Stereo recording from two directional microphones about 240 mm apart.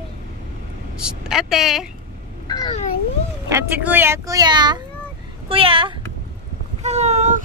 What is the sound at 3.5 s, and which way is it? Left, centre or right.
Speech, centre.